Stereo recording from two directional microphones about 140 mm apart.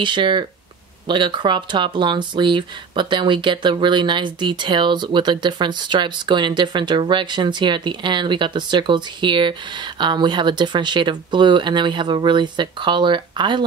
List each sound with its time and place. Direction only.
0.0 s speech: 35° right (ahead or behind)